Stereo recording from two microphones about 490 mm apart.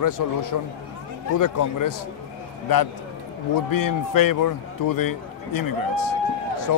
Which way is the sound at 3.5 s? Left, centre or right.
Left.